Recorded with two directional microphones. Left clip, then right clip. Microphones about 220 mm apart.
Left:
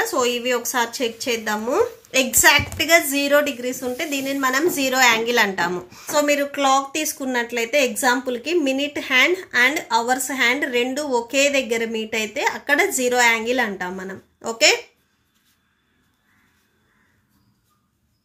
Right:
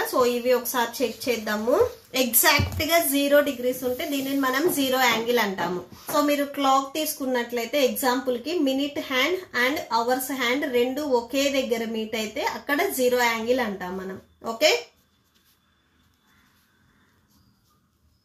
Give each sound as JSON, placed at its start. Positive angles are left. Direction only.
{"t": 0.1, "sound": "speech", "side_deg": 30}
{"t": 6.2, "sound": "speech", "side_deg": 40}